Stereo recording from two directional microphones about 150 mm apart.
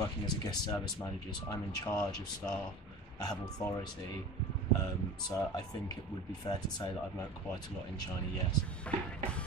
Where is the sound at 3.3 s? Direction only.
25° left (ahead or behind).